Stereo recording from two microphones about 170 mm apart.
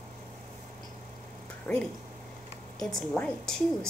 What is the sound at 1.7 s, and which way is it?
A woman's voice, 10° left (ahead or behind).